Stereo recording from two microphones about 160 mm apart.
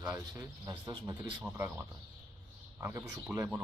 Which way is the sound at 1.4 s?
10° right (ahead or behind).